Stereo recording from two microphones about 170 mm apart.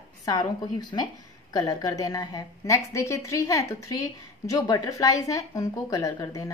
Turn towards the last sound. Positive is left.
turn(degrees=20)  # may be behind; listen again after turning